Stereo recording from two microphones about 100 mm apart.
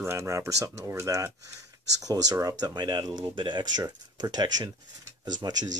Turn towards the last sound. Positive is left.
turn(degrees=-40)  # may be behind; listen again after turning